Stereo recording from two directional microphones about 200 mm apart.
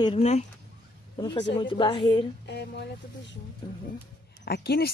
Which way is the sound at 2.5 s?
55° left (ahead or behind).